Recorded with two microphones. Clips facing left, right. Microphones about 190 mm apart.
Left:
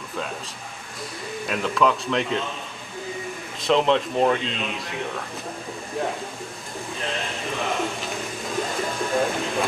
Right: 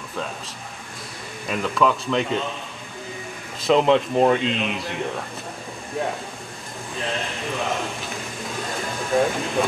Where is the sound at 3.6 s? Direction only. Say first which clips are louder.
Right 3 dB; 5° right (ahead or behind).